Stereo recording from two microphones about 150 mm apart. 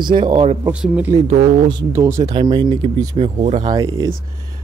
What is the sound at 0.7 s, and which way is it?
Speech, 10° right (ahead or behind).